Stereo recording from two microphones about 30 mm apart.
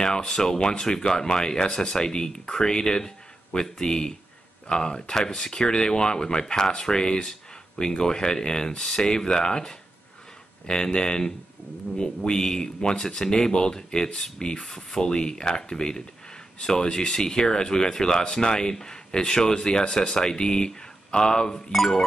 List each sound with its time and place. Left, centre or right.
0.0 s speech: left
21.7 s speech: centre